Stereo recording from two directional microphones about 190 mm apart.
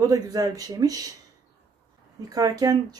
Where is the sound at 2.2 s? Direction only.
20° right (ahead or behind).